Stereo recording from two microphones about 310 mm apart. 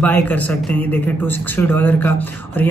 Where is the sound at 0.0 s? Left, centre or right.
Centre.